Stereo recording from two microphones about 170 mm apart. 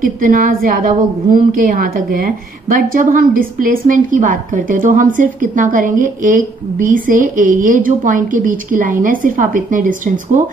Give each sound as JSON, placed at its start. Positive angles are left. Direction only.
{"t": 0.0, "sound": "a woman's voice", "side_deg": -55}